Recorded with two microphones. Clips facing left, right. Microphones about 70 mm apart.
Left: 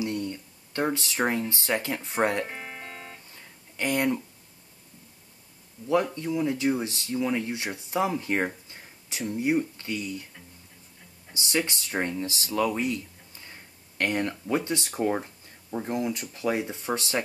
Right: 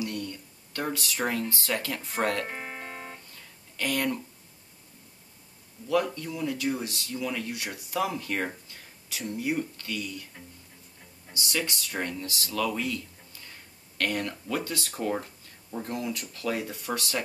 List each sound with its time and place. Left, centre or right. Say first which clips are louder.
0.0 s speech: left 3 dB; left
2.4 s music: right 1 dB; centre
3.3 s a sound: left 3 dB; left
6.1 s speech: left 5 dB; left
11.3 s speech: left 3 dB; left